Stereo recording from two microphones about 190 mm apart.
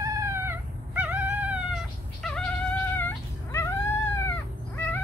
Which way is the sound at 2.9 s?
10° left (ahead or behind).